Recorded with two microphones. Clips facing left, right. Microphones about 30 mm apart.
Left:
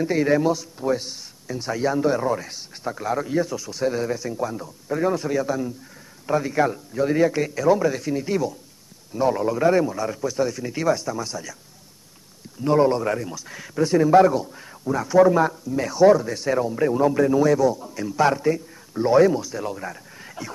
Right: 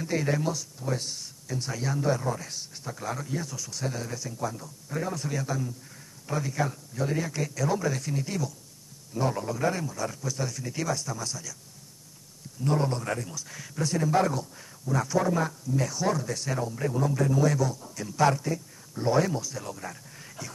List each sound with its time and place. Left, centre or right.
0.0 s speech: centre
12.6 s a man's voice: left
18.3 s speech: left